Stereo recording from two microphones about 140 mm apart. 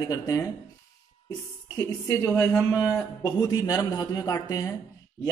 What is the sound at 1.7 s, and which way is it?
A man's voice, 20° left (ahead or behind).